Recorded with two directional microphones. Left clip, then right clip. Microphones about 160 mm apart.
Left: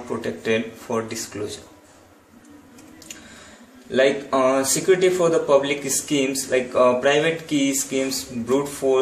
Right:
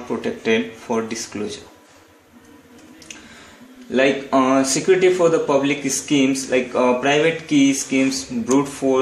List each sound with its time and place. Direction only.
0.2 s speech: 35° right (ahead or behind)
3.9 s speech: 30° right (ahead or behind)